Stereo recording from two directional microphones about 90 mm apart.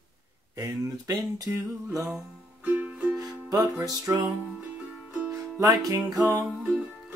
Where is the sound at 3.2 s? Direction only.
45° right (ahead or behind).